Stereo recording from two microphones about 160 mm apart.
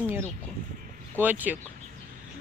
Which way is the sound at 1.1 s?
10° right (ahead or behind).